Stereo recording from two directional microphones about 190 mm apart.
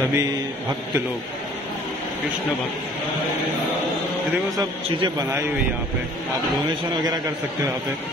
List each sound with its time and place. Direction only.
0.0 s a man's voice: 15° right (ahead or behind)
4.6 s a man's voice: 20° right (ahead or behind)